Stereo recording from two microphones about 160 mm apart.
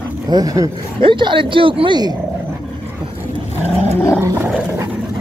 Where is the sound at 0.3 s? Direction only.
25° right (ahead or behind).